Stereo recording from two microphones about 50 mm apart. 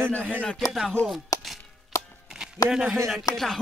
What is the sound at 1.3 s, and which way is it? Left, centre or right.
Chopping, left.